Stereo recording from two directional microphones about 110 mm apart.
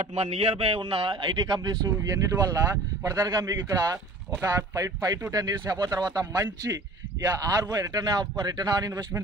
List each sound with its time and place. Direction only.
0.0 s a man's voice: 75° right (ahead or behind); by 1.9 s 40° right (ahead or behind)
1.9 s speech: 25° right (ahead or behind)